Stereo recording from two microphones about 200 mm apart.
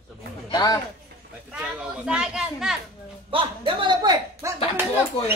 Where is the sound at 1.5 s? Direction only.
5° right (ahead or behind).